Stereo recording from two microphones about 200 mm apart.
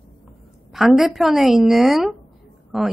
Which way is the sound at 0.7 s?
Centre (ahead or behind).